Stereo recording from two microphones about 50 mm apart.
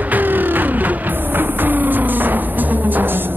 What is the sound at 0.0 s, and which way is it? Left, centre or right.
Music, right.